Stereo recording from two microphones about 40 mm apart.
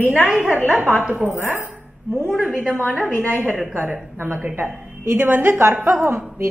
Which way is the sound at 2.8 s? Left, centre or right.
Left.